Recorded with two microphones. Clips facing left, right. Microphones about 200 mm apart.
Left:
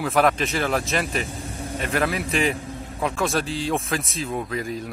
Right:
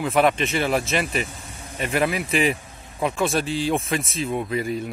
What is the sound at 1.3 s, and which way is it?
Vehicle, 30° left (ahead or behind).